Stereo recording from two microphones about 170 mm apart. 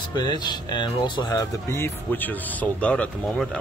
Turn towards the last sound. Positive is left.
turn(degrees=5)  # may be behind; listen again after turning